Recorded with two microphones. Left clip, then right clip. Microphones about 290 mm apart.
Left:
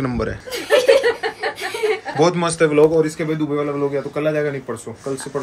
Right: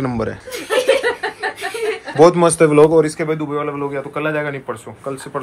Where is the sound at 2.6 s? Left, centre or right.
Right.